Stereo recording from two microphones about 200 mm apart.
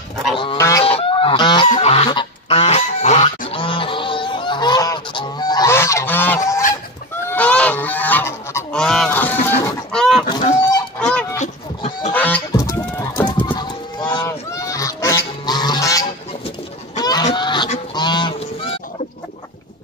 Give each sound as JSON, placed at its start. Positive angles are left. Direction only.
{"t": 0.4, "sound": "goose", "side_deg": 20}
{"t": 0.8, "sound": "goose", "side_deg": 30}
{"t": 9.9, "sound": "fowl", "side_deg": 0}
{"t": 11.0, "sound": "goose", "side_deg": 5}
{"t": 11.3, "sound": "a sound", "side_deg": 35}
{"t": 12.1, "sound": "goose", "side_deg": 10}
{"t": 16.4, "sound": "chicken", "side_deg": 20}
{"t": 17.3, "sound": "goose", "side_deg": 25}